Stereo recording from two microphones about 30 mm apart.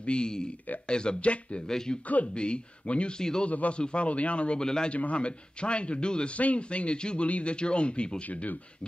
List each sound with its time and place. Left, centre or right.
0.0 s a man's voice: left
1.7 s a man's voice: centre
2.3 s a man's voice: left
3.2 s a man's voice: left
3.4 s a man's voice: left
4.6 s a man's voice: left
4.9 s a man's voice: left
6.3 s a man's voice: left
7.2 s a man's voice: left
7.5 s a man's voice: left
8.2 s a man's voice: left